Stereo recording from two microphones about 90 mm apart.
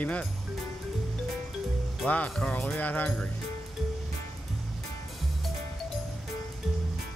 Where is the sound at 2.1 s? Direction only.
15° left (ahead or behind).